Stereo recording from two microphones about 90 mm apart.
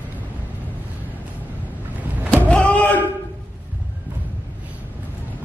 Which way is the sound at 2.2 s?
15° left (ahead or behind).